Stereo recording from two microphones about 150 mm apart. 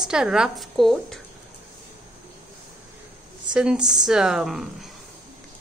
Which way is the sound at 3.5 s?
5° right (ahead or behind).